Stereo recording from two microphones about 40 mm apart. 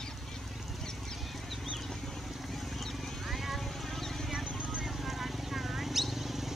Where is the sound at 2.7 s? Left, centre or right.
Centre.